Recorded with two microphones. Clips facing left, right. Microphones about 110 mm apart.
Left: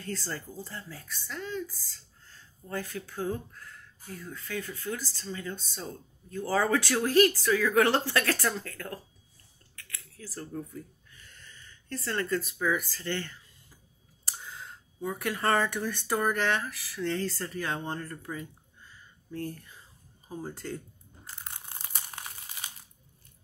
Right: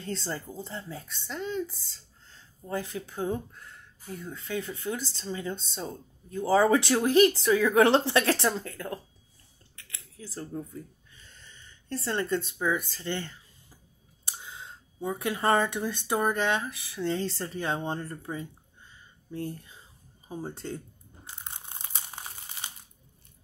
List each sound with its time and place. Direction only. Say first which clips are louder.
0.0 s speech: right 2 dB; 25° right (ahead or behind)
21.5 s crushing: right 1 dB; 20° right (ahead or behind)
22.2 s crumpling: right 1 dB; 25° right (ahead or behind)